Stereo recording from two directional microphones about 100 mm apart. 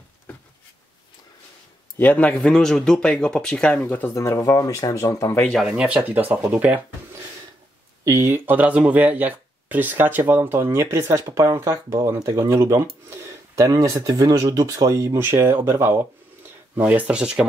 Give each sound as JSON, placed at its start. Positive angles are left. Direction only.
{"t": 2.0, "sound": "speech", "side_deg": 15}
{"t": 2.3, "sound": "speech", "side_deg": 5}
{"t": 4.1, "sound": "speech", "side_deg": 30}
{"t": 5.7, "sound": "speech", "side_deg": -10}
{"t": 8.0, "sound": "speech", "side_deg": -30}
{"t": 15.1, "sound": "speech", "side_deg": -25}
{"t": 16.7, "sound": "speech", "side_deg": -15}